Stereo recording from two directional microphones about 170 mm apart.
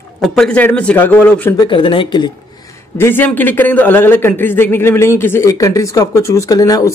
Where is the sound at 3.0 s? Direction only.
10° left (ahead or behind).